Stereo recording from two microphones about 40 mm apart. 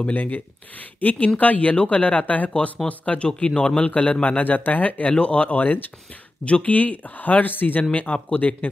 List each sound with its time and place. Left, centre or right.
0.0 s speech: left
3.3 s speech: left
3.9 s speech: left
5.1 s speech: left
6.4 s speech: left
7.9 s speech: left